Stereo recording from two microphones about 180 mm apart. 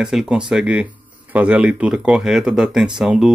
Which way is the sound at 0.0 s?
5° right (ahead or behind).